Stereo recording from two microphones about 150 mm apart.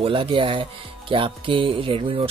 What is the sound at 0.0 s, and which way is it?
Speech, 35° right (ahead or behind).